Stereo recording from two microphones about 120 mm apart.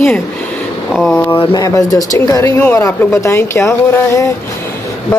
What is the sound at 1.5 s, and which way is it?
Speech, 30° left (ahead or behind).